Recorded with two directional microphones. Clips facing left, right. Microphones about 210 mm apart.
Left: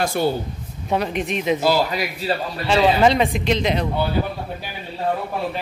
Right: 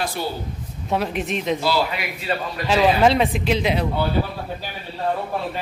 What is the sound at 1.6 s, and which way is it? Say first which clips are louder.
Speech: left 3 dB; 40° left (ahead or behind).